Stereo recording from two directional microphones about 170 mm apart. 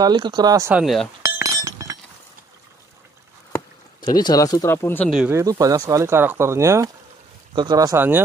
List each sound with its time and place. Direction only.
0.0 s speech: 25° right (ahead or behind)
0.7 s speech: 5° right (ahead or behind)
1.2 s chink: 20° right (ahead or behind)
4.0 s speech: 25° left (ahead or behind)
5.3 s speech: 20° right (ahead or behind)